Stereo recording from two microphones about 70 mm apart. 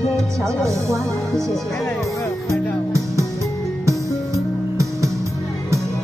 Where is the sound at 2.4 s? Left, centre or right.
Right.